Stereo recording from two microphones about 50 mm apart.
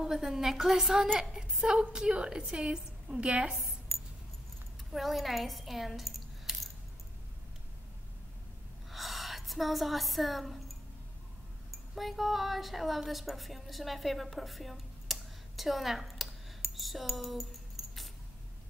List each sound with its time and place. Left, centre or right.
0.0 s a woman's voice: centre
4.9 s speech: centre
8.9 s a woman's voice: centre
11.7 s a woman's voice: centre
16.7 s a sound: centre